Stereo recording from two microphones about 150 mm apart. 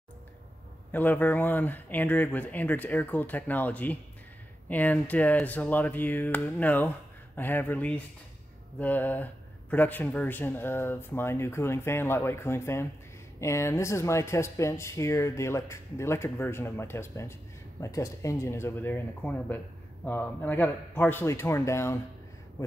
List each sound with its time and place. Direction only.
0.9 s speech: 10° left (ahead or behind)